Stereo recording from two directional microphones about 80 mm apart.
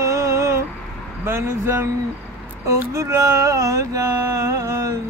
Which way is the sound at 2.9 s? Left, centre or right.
Right.